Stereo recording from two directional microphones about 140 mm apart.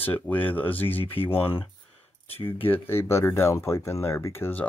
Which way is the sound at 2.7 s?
15° left (ahead or behind).